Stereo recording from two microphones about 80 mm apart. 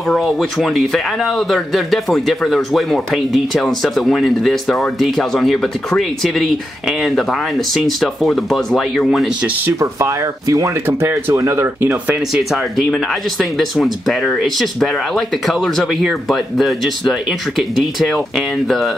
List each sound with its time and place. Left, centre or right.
0.2 s speech: centre
9.8 s speech: right
12.3 s speech: centre